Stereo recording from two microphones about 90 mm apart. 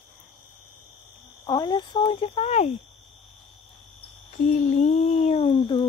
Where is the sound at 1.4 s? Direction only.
50° left (ahead or behind); by 2.3 s 85° left.